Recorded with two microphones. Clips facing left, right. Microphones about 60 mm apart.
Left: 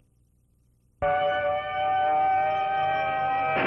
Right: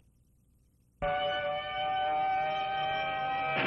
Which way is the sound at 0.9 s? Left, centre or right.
Centre.